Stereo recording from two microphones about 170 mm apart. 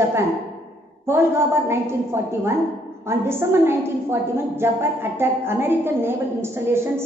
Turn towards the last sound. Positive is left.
turn(degrees=-15)  # may be behind; listen again after turning